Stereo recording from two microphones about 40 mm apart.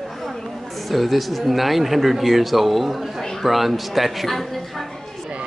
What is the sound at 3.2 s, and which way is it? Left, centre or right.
Speech, centre.